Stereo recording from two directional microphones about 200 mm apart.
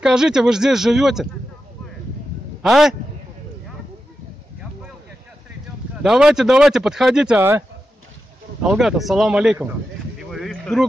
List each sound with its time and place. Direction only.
0.0 s speech: 5° right (ahead or behind)
2.6 s speech: centre (ahead or behind)
6.0 s speech: 5° right (ahead or behind)
8.6 s speech: centre (ahead or behind)
10.3 s a sound: centre (ahead or behind)